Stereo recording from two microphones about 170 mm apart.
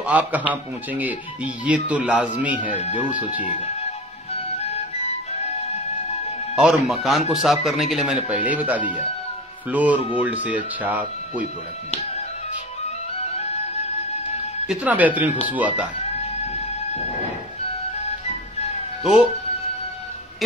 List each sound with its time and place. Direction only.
0.0 s speech: 10° right (ahead or behind)
2.8 s speech: 40° left (ahead or behind)
3.2 s speech: 10° right (ahead or behind)
4.3 s music: 40° left (ahead or behind)
6.5 s speech: 5° right (ahead or behind)
14.7 s speech: 10° right (ahead or behind)